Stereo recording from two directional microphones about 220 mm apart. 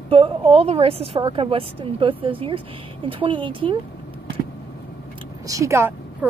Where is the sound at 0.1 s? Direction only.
25° right (ahead or behind).